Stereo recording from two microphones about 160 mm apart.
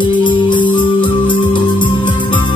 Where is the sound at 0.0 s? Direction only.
30° left (ahead or behind).